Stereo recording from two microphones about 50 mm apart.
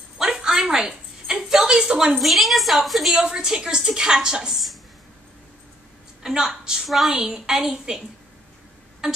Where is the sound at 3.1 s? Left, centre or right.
Centre.